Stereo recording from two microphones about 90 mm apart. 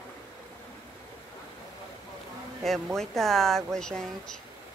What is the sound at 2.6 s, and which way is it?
Speech, 5° left (ahead or behind).